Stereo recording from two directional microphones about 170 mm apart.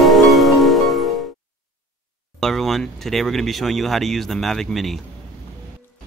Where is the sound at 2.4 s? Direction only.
Centre (ahead or behind).